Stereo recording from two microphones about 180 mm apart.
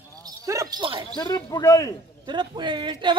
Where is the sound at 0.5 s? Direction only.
20° right (ahead or behind).